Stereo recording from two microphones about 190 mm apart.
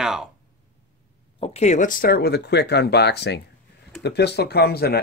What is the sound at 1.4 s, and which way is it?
Speech, 35° left (ahead or behind).